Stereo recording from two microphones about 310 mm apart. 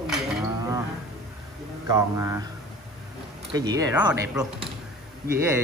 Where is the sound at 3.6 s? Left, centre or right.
Centre.